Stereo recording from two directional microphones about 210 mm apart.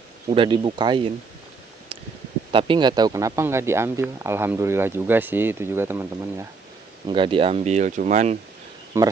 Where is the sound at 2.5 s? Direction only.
20° right (ahead or behind).